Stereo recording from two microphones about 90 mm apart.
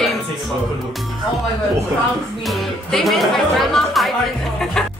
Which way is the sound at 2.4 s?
Centre (ahead or behind).